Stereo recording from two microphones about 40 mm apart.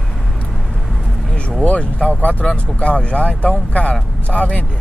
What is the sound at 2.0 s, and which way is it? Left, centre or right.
Speech, left.